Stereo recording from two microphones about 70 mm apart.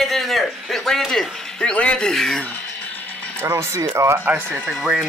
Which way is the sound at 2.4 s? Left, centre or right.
Left.